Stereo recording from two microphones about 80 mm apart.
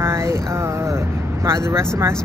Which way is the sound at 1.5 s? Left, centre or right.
Right.